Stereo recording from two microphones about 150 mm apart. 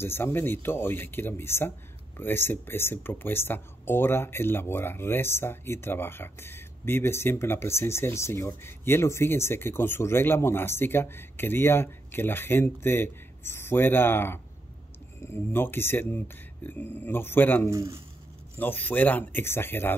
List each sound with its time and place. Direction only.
0.0 s speech: 15° left (ahead or behind)
17.6 s speech: 20° right (ahead or behind)
18.6 s speech: 10° left (ahead or behind)